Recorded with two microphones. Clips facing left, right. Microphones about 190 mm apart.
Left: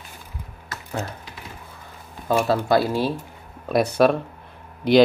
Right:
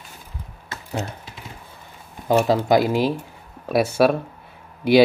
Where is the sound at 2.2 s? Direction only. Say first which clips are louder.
Right 3 dB; 15° right (ahead or behind).